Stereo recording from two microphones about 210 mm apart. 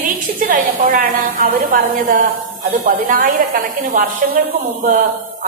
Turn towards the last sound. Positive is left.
turn(degrees=-35)  # may be behind; listen again after turning